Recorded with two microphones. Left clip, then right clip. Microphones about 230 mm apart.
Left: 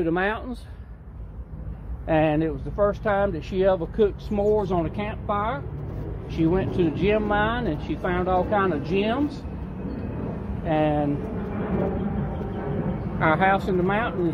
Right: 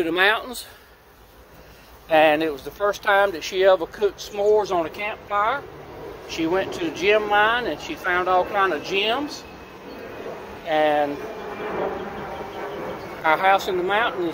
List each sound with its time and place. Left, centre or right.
0.0 s speech: right
2.0 s speech: right
4.4 s speech: centre
10.7 s speech: right
11.6 s insect: centre
13.3 s speech: centre